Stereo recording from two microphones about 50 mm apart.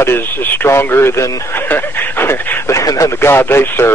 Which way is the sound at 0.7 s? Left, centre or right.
Left.